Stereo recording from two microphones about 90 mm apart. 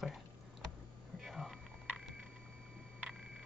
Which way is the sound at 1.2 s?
Centre (ahead or behind).